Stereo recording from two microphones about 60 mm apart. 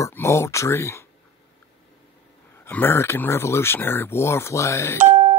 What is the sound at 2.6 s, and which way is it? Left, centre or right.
Speech, left.